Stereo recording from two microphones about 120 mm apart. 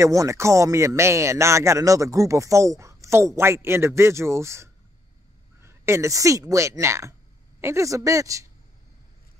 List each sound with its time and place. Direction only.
0.0 s speech: 25° right (ahead or behind)